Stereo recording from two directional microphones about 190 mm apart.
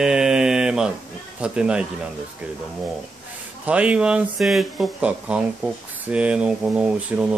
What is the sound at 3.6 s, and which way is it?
Speech, 5° right (ahead or behind).